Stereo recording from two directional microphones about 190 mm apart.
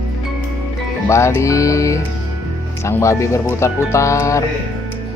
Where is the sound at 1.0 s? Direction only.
15° left (ahead or behind).